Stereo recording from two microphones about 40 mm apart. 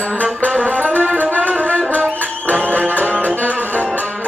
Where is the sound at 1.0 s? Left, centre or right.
Right.